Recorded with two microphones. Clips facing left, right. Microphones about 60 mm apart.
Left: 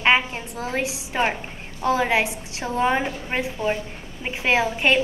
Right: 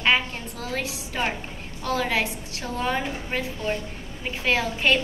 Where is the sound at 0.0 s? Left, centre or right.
Left.